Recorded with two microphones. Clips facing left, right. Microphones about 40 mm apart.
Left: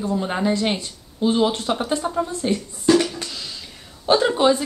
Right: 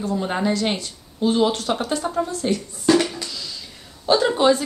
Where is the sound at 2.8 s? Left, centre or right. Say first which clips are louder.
Left 1 dB; centre.